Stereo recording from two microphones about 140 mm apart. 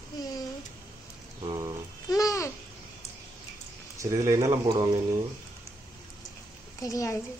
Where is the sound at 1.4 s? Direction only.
30° right (ahead or behind).